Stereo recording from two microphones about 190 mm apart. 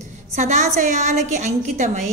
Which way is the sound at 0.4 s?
40° right (ahead or behind).